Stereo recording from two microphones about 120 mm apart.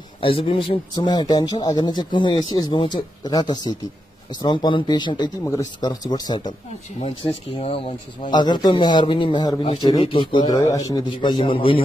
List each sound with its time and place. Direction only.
0.2 s a man's voice: 50° left (ahead or behind)
0.9 s speech: 35° left (ahead or behind)
5.4 s speech: 25° left (ahead or behind)
7.0 s speech: 55° left (ahead or behind)
8.3 s speech: 35° left (ahead or behind)
9.8 s a man's voice: 45° left (ahead or behind)